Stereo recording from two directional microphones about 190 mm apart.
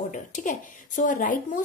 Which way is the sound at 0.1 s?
45° left (ahead or behind).